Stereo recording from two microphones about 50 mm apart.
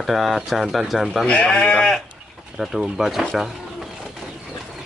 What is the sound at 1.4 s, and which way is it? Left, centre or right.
Speech, centre.